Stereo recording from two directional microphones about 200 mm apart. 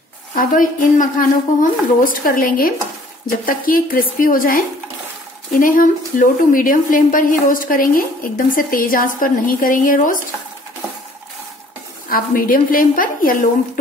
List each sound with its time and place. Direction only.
0.3 s a woman's voice: 45° left (ahead or behind)
12.1 s a woman's voice: 45° left (ahead or behind)